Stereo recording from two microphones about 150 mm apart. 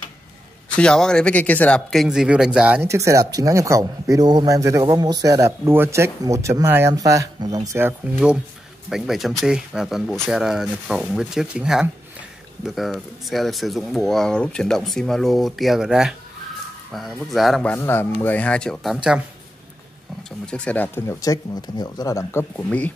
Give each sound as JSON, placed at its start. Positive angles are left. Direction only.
{"t": 0.7, "sound": "speech", "side_deg": 5}
{"t": 20.4, "sound": "speech", "side_deg": 5}